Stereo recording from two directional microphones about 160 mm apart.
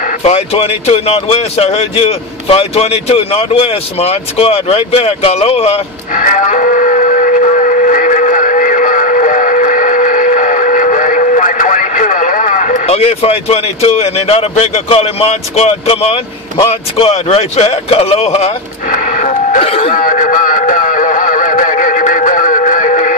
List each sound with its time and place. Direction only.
0.2 s speech: 40° left (ahead or behind)
19.9 s music: 60° left (ahead or behind)